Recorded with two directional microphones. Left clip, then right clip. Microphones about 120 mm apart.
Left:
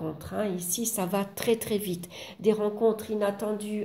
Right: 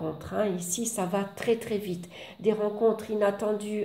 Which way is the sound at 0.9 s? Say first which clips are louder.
Even; 40° left (ahead or behind).